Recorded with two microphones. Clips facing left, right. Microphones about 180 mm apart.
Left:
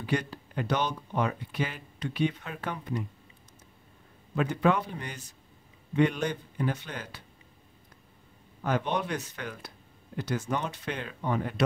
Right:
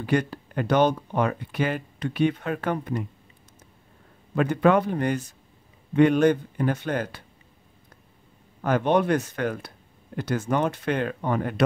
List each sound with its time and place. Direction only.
0.0 s speech: 55° right (ahead or behind)
4.4 s speech: 55° right (ahead or behind)
8.6 s speech: 55° right (ahead or behind)